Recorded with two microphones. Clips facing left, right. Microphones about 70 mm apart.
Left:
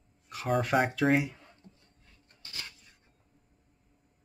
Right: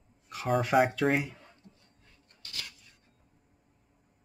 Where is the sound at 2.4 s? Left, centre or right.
Left.